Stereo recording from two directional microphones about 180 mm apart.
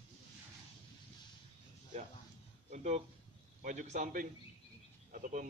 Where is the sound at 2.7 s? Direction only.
40° right (ahead or behind).